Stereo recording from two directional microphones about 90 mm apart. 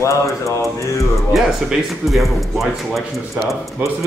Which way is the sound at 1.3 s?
Centre (ahead or behind).